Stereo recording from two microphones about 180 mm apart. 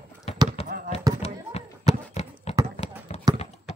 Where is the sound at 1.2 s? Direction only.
35° left (ahead or behind).